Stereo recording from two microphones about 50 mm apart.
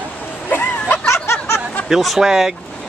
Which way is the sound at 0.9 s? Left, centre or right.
Left.